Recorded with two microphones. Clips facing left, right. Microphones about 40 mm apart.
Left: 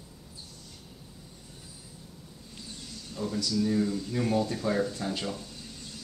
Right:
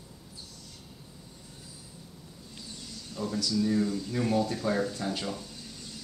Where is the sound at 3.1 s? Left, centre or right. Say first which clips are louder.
Even; centre.